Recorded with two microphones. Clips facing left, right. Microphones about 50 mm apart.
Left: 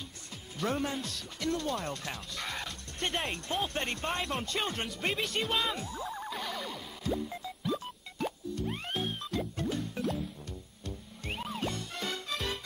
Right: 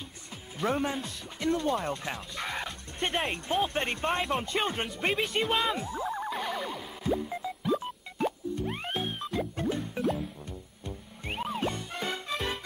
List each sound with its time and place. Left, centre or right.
0.6 s speech: centre
6.0 s music: centre
8.9 s music: centre